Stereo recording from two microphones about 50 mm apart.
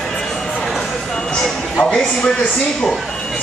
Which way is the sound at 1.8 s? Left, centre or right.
Centre.